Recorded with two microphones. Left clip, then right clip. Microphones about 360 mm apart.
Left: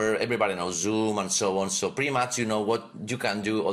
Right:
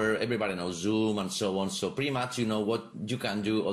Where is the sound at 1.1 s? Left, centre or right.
Centre.